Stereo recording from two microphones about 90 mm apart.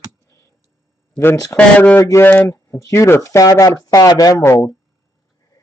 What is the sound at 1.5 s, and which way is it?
Speech, 20° left (ahead or behind).